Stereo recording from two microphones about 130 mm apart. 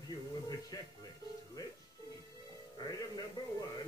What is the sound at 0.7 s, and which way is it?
Music, 30° left (ahead or behind).